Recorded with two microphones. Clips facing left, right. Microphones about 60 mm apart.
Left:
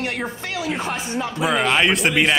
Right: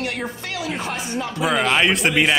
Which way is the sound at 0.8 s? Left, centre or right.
Left.